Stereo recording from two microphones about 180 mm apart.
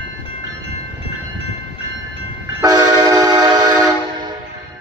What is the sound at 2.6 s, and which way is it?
Train, 20° right (ahead or behind).